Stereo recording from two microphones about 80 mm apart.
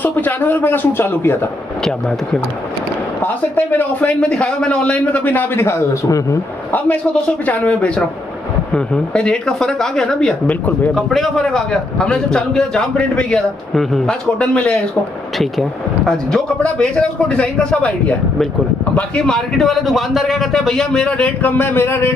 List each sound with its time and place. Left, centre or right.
0.0 s speech: left
1.9 s a man's voice: centre
3.2 s speech: left
4.2 s a man's voice: centre
7.4 s a man's voice: centre
11.0 s a man's voice: centre
16.1 s a man's voice: centre
21.2 s speech: left